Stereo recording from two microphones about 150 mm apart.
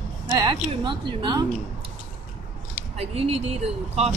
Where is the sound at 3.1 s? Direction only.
40° right (ahead or behind).